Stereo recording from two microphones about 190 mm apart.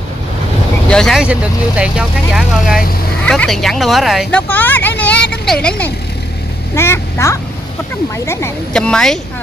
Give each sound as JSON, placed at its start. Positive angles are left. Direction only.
{"t": 0.8, "sound": "speech", "side_deg": 5}
{"t": 8.7, "sound": "speech", "side_deg": 5}